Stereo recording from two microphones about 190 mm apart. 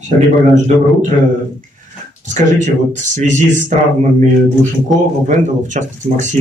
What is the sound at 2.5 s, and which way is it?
Speech, 40° right (ahead or behind).